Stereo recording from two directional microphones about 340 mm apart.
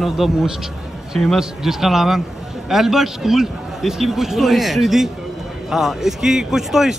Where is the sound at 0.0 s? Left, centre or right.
Centre.